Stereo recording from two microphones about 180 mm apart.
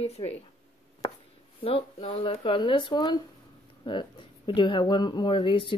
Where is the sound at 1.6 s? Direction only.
30° left (ahead or behind).